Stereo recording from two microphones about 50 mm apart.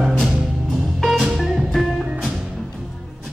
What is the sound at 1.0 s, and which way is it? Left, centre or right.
Music, centre.